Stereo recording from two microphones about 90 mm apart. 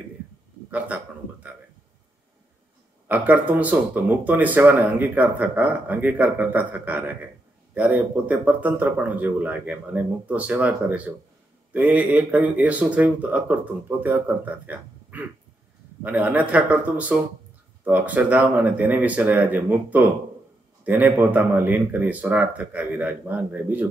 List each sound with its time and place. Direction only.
0.7 s a man's voice: 15° right (ahead or behind)
3.1 s speech: 20° right (ahead or behind)